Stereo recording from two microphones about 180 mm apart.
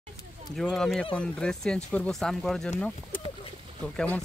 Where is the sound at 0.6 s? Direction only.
Centre (ahead or behind).